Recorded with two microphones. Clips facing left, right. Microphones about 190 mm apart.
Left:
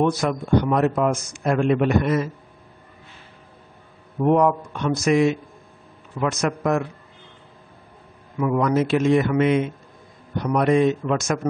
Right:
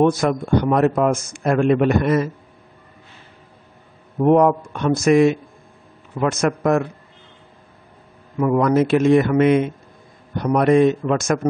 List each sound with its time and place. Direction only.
0.0 s a man's voice: 50° right (ahead or behind)
4.2 s a man's voice: 50° right (ahead or behind)
6.4 s a man's voice: 50° right (ahead or behind)
8.4 s a man's voice: 50° right (ahead or behind)